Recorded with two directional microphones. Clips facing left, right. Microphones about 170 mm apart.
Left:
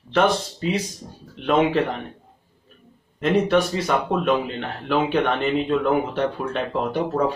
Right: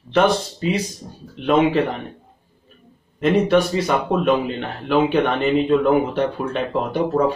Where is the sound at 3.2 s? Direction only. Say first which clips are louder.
Right 3 dB; 5° right (ahead or behind).